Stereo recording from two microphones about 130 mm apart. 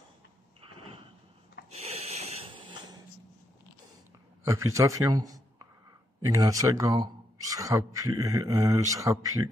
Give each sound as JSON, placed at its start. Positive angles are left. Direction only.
{"t": 1.7, "sound": "snort", "side_deg": -55}
{"t": 4.5, "sound": "speech", "side_deg": -25}